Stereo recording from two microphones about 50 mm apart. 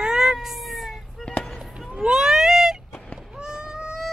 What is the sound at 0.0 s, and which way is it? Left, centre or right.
Cat, centre.